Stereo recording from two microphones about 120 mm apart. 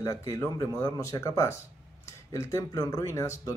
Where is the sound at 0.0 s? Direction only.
25° left (ahead or behind).